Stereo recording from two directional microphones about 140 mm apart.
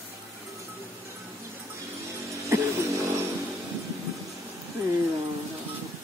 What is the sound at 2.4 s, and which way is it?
Music, 20° right (ahead or behind).